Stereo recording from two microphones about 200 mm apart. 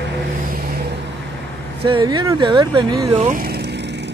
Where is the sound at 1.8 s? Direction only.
20° right (ahead or behind).